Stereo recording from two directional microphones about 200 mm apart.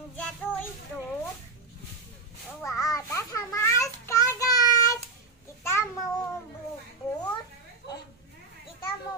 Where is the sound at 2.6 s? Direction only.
15° left (ahead or behind).